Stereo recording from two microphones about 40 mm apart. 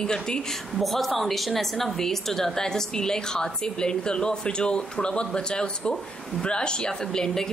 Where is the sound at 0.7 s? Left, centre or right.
Centre.